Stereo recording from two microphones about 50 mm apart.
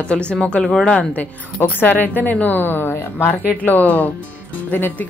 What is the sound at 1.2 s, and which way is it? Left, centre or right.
A woman's voice, left.